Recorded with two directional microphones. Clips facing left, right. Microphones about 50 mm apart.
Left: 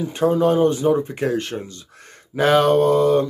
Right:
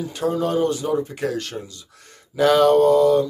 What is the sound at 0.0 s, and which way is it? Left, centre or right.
A man's voice, left.